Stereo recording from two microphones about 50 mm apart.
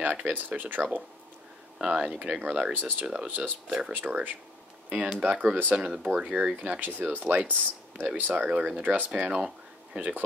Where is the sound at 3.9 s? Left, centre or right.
Right.